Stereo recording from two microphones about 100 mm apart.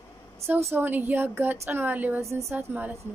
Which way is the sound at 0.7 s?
20° right (ahead or behind).